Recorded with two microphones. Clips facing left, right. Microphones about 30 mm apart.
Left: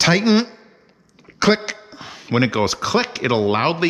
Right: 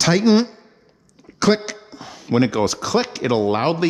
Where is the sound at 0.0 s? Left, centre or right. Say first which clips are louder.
Even; centre.